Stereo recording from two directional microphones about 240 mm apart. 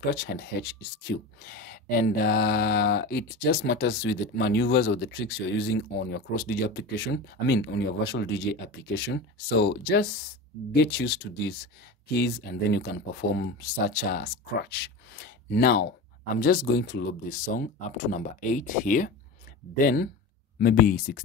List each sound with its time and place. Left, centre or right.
0.1 s speech: left
12.7 s speech: left